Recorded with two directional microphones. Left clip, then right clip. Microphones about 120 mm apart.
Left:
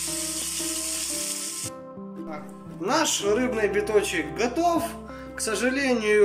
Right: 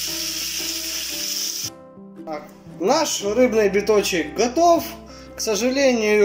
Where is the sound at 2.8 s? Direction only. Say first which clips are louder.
Right 4 dB; 30° right (ahead or behind).